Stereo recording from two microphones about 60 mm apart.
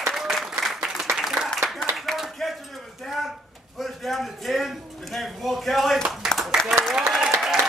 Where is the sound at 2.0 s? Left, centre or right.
Centre.